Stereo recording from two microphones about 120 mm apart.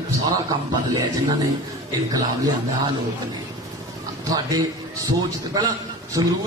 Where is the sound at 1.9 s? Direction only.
30° right (ahead or behind).